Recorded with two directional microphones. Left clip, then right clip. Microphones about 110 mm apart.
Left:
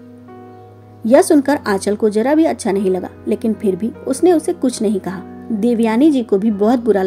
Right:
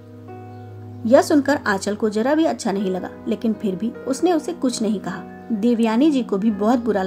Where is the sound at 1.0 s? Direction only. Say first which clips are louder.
Left 4 dB; 45° left (ahead or behind).